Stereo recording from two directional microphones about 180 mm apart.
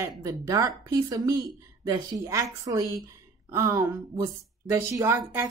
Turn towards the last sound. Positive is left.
turn(degrees=-15)  # may be behind; listen again after turning